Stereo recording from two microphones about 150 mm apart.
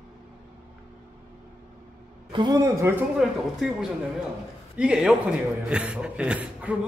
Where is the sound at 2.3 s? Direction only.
25° right (ahead or behind).